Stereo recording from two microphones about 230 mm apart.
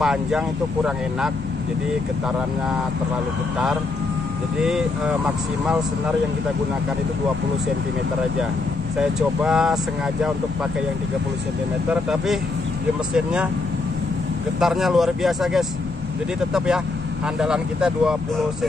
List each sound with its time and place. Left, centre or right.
0.0 s speech: centre
4.6 s speech: centre
9.4 s speech: centre
11.9 s speech: centre
14.6 s speech: centre